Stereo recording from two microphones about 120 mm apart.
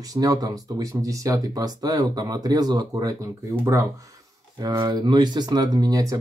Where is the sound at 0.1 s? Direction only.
30° right (ahead or behind).